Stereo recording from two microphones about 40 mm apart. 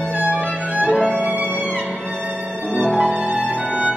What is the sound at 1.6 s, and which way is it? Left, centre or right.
Violin, right.